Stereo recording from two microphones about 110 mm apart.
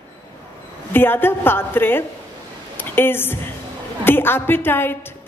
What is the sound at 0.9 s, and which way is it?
A woman's voice, 20° left (ahead or behind).